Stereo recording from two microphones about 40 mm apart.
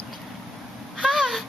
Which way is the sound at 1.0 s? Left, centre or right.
Centre.